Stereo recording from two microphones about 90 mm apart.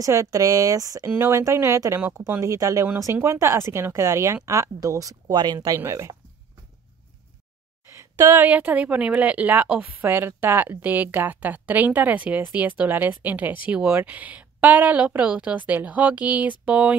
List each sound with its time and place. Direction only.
0.0 s a woman's voice: 35° right (ahead or behind)
5.8 s speech: 35° right (ahead or behind)
7.9 s a sound: 35° right (ahead or behind)
8.5 s a woman's voice: 15° right (ahead or behind)